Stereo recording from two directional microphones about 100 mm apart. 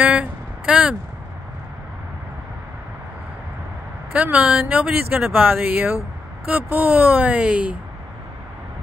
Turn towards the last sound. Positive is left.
turn(degrees=-10)  # may be behind; listen again after turning